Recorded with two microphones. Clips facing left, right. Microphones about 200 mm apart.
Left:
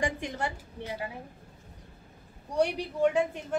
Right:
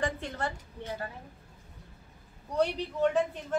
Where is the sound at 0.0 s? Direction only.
15° left (ahead or behind).